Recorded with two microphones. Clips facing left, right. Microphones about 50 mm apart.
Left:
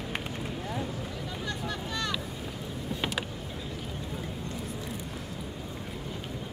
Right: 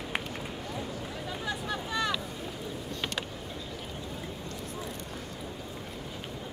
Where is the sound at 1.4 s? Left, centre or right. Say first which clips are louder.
Right 1 dB; centre.